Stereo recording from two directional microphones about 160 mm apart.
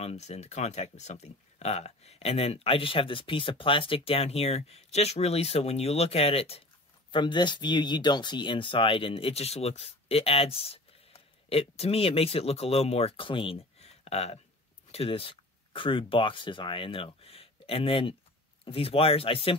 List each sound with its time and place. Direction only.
0.0 s speech: 40° left (ahead or behind)